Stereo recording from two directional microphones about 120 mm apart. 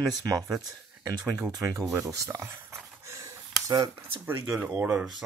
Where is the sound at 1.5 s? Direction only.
30° right (ahead or behind).